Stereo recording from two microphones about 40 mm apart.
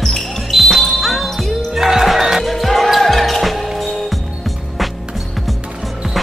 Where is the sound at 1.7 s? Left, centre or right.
Centre.